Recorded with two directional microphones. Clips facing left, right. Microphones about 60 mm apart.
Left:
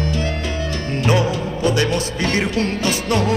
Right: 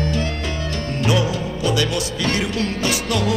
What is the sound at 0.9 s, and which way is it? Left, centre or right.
Speech, left.